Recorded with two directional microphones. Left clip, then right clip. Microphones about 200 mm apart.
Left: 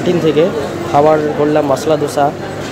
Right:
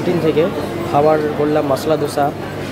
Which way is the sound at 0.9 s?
5° left (ahead or behind).